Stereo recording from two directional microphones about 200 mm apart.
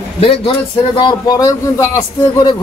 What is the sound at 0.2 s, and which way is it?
A man's voice, 30° left (ahead or behind).